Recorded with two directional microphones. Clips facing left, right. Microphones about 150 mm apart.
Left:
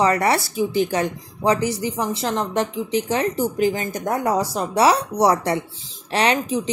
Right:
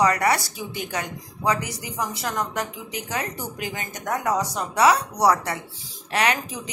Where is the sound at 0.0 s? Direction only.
30° left (ahead or behind).